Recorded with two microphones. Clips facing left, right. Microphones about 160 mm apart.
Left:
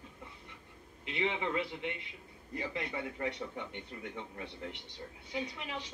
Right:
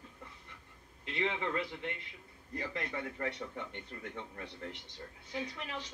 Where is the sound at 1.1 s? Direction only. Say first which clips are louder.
Left 1 dB; 15° left (ahead or behind).